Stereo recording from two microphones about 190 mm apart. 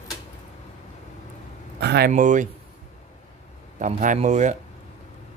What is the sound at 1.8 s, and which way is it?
Speech, 60° right (ahead or behind).